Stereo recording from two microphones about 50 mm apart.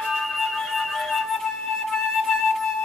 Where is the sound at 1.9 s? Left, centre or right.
Centre.